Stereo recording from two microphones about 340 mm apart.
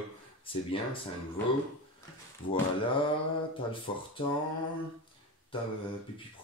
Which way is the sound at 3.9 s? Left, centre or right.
Centre.